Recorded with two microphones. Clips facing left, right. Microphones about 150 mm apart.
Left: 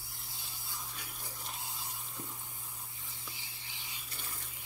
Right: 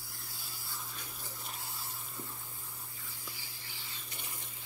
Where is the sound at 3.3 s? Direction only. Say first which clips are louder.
Right 1 dB; 20° left (ahead or behind).